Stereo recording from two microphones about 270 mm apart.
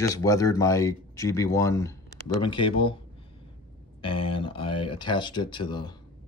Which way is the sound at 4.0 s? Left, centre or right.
Centre.